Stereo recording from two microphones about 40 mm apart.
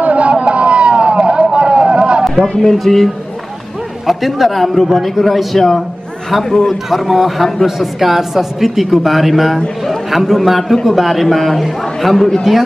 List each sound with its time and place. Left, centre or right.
0.0 s vehicle: right
2.2 s a man's voice: centre
4.1 s a man's voice: centre
6.9 s a man's voice: centre
12.5 s speech: centre